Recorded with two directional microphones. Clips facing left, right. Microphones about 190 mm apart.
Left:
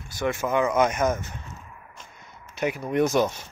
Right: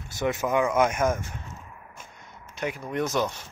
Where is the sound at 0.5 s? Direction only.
10° right (ahead or behind).